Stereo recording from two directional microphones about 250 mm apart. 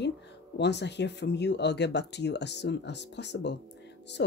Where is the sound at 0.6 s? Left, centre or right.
Left.